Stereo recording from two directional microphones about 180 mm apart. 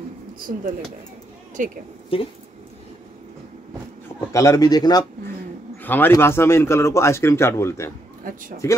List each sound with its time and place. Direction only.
0.5 s a woman's voice: 40° right (ahead or behind)
2.1 s speech: 30° left (ahead or behind)
4.3 s speech: 20° left (ahead or behind)
5.8 s speech: 10° left (ahead or behind)
8.2 s speech: 50° right (ahead or behind)